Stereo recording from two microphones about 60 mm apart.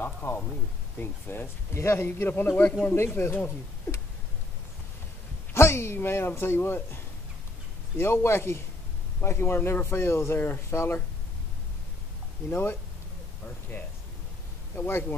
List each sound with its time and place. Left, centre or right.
0.0 s a sound: left
1.0 s a man's voice: left
2.0 s a man's voice: left
2.9 s a man's voice: left
5.5 s a man's voice: left
8.0 s a man's voice: left
10.7 s a man's voice: left
12.4 s a man's voice: left
14.9 s a man's voice: left